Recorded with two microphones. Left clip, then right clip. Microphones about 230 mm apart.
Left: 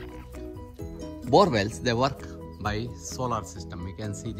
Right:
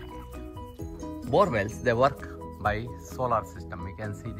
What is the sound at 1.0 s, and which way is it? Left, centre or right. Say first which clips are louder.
Speech: left 3 dB; centre.